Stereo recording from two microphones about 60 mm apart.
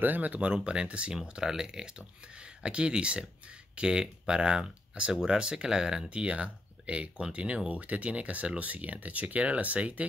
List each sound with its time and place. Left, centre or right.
0.0 s speech: right